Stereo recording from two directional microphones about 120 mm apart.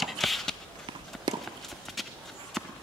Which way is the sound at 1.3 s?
40° right (ahead or behind).